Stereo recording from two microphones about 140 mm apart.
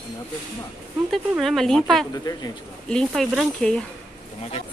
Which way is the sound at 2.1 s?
25° left (ahead or behind).